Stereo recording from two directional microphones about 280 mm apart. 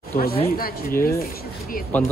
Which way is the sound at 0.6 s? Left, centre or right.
Left.